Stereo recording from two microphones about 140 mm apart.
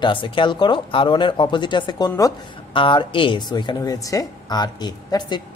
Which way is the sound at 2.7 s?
35° left (ahead or behind).